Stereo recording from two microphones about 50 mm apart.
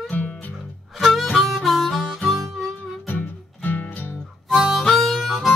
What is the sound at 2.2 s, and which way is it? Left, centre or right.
Music, centre.